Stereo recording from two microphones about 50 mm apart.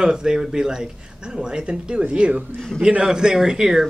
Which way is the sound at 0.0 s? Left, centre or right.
Centre.